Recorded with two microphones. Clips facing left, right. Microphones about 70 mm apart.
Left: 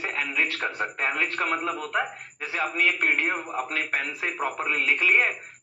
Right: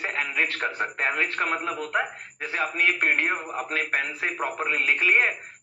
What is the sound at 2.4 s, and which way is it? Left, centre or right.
A man's voice, right.